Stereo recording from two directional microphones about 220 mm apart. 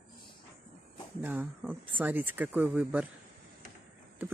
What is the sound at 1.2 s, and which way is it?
Speech, 10° right (ahead or behind).